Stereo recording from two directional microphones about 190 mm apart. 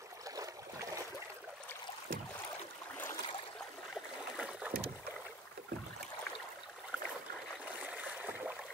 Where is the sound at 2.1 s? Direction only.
50° right (ahead or behind).